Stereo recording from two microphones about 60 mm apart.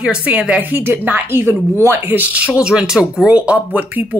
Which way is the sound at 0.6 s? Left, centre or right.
Right.